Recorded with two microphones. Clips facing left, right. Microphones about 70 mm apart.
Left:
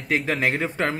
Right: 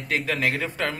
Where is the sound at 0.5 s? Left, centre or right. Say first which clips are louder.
Left 3 dB; left.